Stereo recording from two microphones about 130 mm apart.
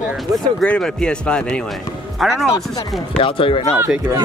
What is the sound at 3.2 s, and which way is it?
Speech, 45° left (ahead or behind).